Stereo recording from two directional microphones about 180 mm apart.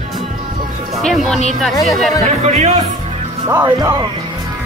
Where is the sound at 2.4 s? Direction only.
40° right (ahead or behind).